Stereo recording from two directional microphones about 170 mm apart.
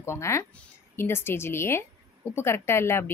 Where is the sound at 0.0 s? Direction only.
15° left (ahead or behind).